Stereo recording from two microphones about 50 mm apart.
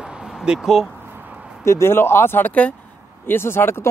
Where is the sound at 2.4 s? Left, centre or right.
Left.